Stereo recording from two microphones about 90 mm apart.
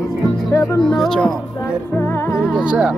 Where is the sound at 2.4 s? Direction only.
10° right (ahead or behind).